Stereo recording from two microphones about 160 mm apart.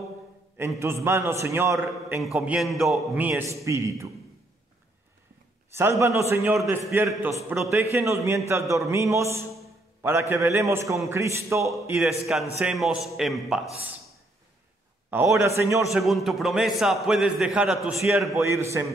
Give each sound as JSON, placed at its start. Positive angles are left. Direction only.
{"t": 0.6, "sound": "a man's voice", "side_deg": -15}
{"t": 2.2, "sound": "a man's voice", "side_deg": -5}
{"t": 3.2, "sound": "a man's voice", "side_deg": -10}
{"t": 5.8, "sound": "a man's voice", "side_deg": -15}
{"t": 12.0, "sound": "a man's voice", "side_deg": 0}
{"t": 15.0, "sound": "a man's voice", "side_deg": -15}
{"t": 15.9, "sound": "a man's voice", "side_deg": 0}
{"t": 18.4, "sound": "a man's voice", "side_deg": -15}